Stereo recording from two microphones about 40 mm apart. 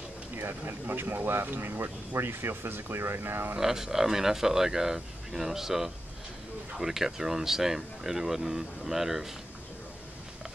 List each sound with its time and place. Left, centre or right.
0.4 s speech: right
3.5 s speech: centre